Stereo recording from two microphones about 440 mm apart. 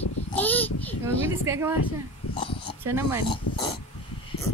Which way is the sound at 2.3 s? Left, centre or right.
Centre.